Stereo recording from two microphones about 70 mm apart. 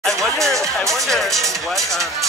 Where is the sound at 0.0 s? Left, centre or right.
Centre.